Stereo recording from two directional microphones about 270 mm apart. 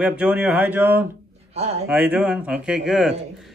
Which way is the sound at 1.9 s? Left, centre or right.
Centre.